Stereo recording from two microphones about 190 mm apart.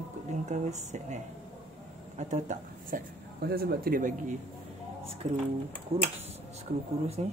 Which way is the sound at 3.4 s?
55° right (ahead or behind).